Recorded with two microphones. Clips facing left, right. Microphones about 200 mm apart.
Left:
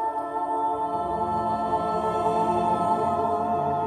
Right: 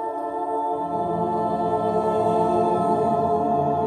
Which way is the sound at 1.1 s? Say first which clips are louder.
Right 4 dB; 30° right (ahead or behind).